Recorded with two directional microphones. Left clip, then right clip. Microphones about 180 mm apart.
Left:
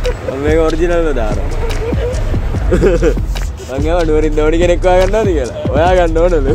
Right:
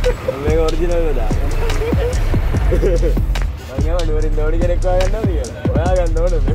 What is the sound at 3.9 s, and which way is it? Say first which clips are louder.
Speech: left 10 dB; 55° left (ahead or behind).